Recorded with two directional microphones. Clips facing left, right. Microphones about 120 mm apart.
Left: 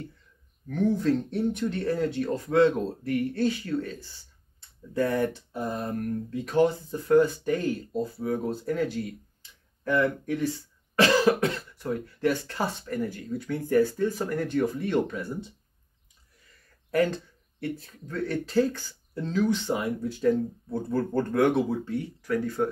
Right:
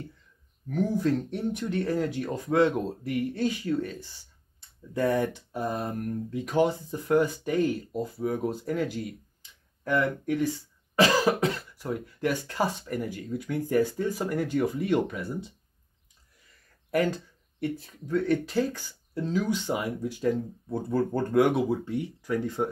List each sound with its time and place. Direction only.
0.7 s speech: 10° right (ahead or behind)
17.6 s speech: 15° right (ahead or behind)